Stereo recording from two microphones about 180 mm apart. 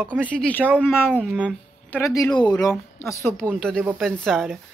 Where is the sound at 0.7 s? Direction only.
5° right (ahead or behind).